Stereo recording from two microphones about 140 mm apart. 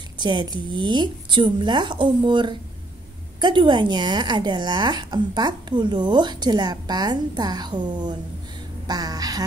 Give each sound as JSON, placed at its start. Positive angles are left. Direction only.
{"t": 0.2, "sound": "a woman's voice", "side_deg": -35}